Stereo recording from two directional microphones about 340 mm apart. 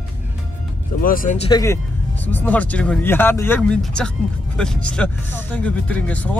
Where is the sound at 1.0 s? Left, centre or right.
Left.